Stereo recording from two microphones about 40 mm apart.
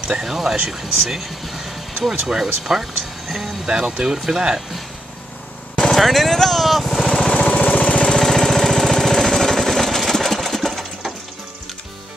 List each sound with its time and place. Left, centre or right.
0.2 s speech: centre
3.6 s speech: centre
5.9 s vehicle: centre
7.1 s jackhammer: centre
8.2 s jackhammer: centre